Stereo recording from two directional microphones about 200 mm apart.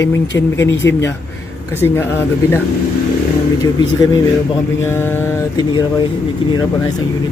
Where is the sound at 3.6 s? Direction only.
20° left (ahead or behind).